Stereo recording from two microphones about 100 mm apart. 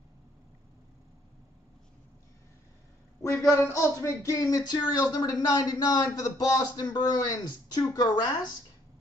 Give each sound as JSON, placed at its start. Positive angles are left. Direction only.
{"t": 3.5, "sound": "speech", "side_deg": 30}